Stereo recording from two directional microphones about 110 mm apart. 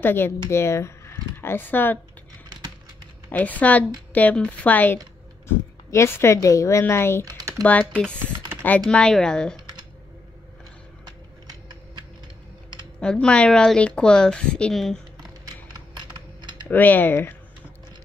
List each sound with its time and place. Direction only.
0.0 s speech: 20° left (ahead or behind)
3.3 s a woman's voice: 15° left (ahead or behind)
7.3 s typing: 35° right (ahead or behind)
7.6 s speech: 15° left (ahead or behind)
13.0 s speech: 10° left (ahead or behind)
16.6 s speech: 15° left (ahead or behind)